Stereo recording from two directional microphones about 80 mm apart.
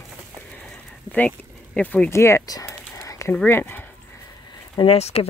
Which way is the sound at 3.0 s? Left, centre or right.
Left.